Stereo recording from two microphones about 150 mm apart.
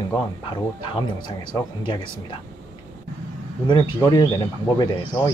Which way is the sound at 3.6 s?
30° left (ahead or behind).